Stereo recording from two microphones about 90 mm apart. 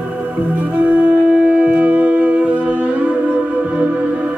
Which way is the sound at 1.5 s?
15° right (ahead or behind).